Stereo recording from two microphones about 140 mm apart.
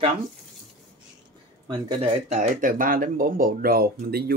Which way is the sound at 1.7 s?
50° right (ahead or behind).